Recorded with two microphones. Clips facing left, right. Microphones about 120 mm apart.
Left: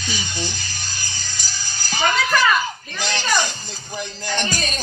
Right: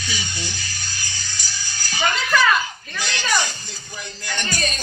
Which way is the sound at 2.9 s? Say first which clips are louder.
Left 1 dB; 40° left (ahead or behind).